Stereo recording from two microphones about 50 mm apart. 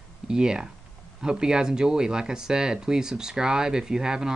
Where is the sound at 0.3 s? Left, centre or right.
Centre.